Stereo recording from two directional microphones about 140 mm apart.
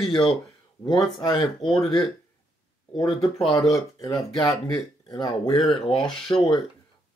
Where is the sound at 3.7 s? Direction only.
25° left (ahead or behind).